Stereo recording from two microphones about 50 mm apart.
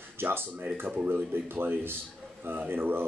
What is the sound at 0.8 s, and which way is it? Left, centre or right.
Speech, right.